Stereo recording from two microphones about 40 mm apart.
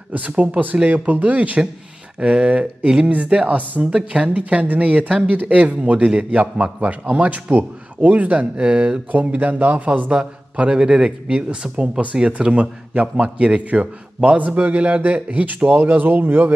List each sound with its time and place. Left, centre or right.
0.1 s a man's voice: right
2.1 s a man's voice: right
3.8 s speech: right
4.3 s a man's voice: right